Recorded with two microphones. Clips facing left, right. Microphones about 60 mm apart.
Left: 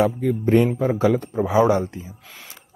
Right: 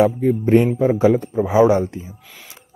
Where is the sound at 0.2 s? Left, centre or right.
Right.